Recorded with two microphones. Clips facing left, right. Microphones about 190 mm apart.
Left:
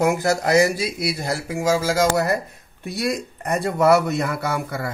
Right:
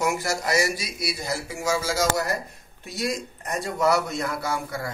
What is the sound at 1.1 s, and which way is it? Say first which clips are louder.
Speech: left 5 dB; 90° left.